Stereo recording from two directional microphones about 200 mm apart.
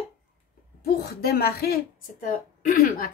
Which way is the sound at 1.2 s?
50° left (ahead or behind).